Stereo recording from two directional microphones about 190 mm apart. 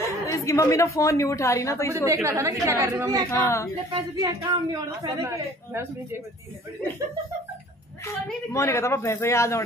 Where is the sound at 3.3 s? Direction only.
15° left (ahead or behind).